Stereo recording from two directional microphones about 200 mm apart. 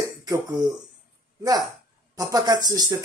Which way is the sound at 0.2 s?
20° right (ahead or behind).